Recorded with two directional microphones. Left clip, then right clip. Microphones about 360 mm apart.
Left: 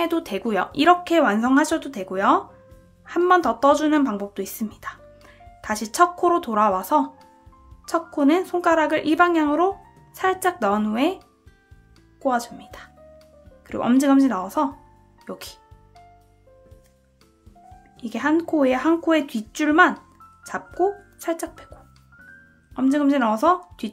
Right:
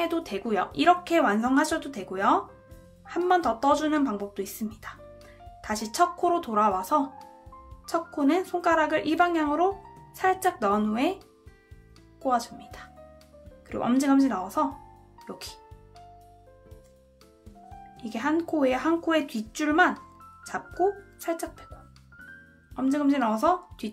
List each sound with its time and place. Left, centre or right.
0.0 s speech: centre
12.2 s speech: centre
17.9 s speech: centre
22.8 s speech: centre